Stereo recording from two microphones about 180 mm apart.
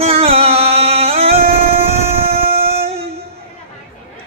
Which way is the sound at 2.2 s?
35° right (ahead or behind).